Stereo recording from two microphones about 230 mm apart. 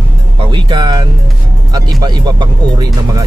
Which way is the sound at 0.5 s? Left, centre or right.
Centre.